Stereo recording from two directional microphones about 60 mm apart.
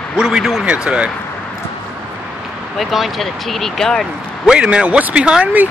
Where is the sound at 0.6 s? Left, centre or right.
Centre.